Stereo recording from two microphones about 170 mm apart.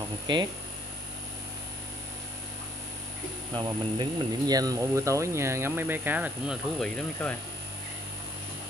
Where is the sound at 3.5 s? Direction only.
25° right (ahead or behind); by 6.6 s 10° right (ahead or behind).